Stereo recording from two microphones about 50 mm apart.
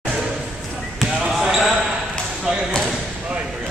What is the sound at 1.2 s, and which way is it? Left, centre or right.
Basketball bounce, centre.